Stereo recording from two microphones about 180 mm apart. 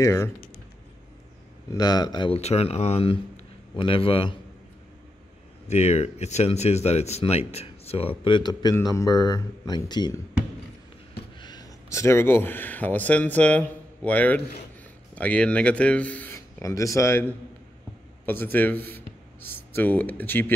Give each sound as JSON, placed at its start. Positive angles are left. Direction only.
{"t": 0.0, "sound": "speech", "side_deg": 15}
{"t": 1.7, "sound": "speech", "side_deg": 20}
{"t": 5.7, "sound": "speech", "side_deg": 35}
{"t": 11.3, "sound": "speech", "side_deg": 25}